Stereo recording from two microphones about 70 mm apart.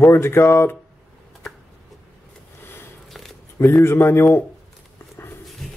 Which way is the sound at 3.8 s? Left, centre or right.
Left.